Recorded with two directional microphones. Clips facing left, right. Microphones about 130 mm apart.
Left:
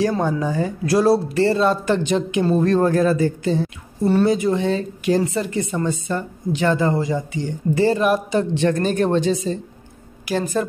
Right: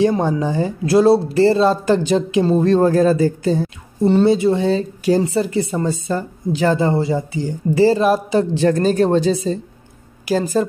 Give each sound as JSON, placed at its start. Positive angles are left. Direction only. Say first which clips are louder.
{"t": 0.0, "sound": "speech", "louder": "right 3 dB", "side_deg": -25}
{"t": 4.0, "sound": "speech", "louder": "right 3 dB", "side_deg": -25}